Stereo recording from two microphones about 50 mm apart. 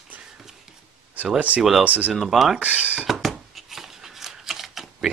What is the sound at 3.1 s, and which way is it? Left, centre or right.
Shuffling cards, centre.